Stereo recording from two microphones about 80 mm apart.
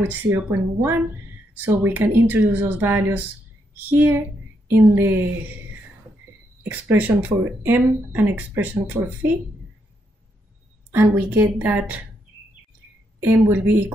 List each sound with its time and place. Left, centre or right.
0.0 s speech: right
6.7 s speech: right
11.1 s speech: right
13.2 s speech: right